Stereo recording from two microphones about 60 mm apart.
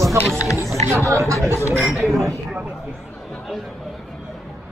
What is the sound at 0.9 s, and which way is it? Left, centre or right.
Speech, right.